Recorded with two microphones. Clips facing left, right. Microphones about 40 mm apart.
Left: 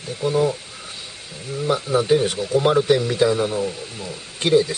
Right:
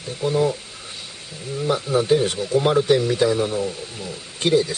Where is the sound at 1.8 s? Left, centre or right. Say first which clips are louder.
Even; centre.